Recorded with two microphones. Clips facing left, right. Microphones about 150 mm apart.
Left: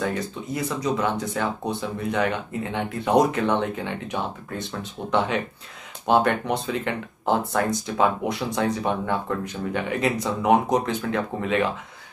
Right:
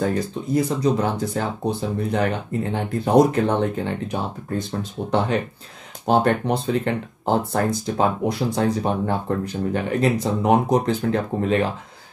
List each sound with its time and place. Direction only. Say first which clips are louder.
0.0 s speech: right 4 dB; 35° right (ahead or behind)
6.0 s speech: right 2 dB; 35° right (ahead or behind)